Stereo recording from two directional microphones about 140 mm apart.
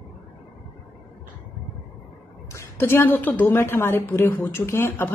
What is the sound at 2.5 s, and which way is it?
Speech, 15° left (ahead or behind).